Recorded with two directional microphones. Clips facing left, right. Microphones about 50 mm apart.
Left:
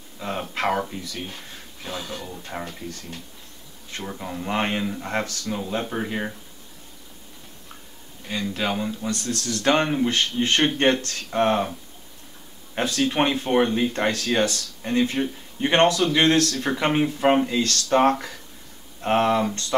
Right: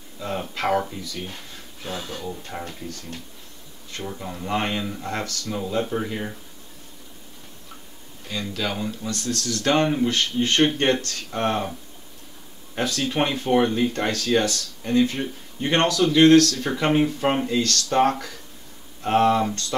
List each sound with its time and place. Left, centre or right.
0.2 s speech: left
2.5 s speech: centre
3.9 s speech: left
8.3 s speech: left
12.7 s speech: left
16.9 s speech: centre
17.6 s speech: left